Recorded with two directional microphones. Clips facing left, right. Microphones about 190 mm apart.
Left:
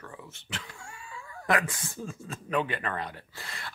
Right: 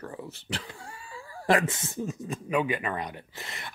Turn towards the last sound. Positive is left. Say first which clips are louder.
# right 2 dB
turn(degrees=-20)  # may be behind; listen again after turning